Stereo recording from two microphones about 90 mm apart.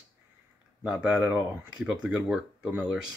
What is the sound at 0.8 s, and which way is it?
Speech, 10° right (ahead or behind).